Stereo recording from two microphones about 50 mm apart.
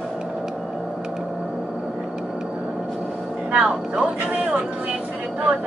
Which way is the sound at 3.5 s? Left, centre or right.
Right.